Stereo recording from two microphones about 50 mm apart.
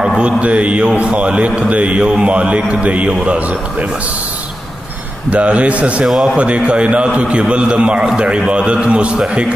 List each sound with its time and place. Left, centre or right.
0.2 s a man's voice: right
5.3 s a man's voice: right
6.0 s speech: centre
6.3 s a man's voice: right